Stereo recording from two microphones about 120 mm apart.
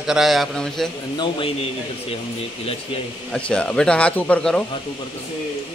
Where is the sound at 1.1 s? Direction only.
45° left (ahead or behind).